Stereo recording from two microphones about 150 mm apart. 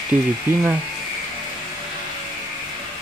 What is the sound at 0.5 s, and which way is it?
Speech, 15° right (ahead or behind).